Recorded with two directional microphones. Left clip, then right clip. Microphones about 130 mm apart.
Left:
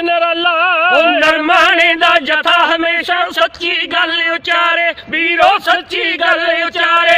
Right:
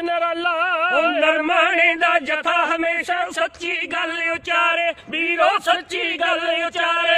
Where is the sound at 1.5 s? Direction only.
10° left (ahead or behind).